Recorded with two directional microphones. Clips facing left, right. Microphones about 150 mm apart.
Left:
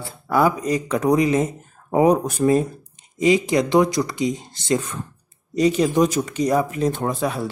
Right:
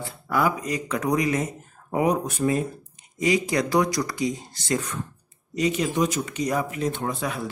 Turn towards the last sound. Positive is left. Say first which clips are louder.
# left 5 dB
turn(degrees=35)  # may be behind; listen again after turning